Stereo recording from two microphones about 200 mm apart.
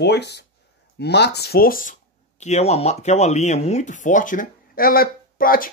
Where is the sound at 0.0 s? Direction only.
55° left (ahead or behind).